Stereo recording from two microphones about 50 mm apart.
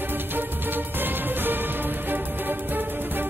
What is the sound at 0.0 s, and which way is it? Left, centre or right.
Music, right.